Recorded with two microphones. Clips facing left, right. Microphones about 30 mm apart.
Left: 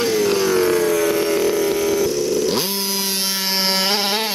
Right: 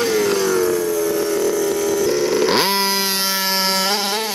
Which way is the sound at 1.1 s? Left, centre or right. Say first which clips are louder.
Left 1 dB; left.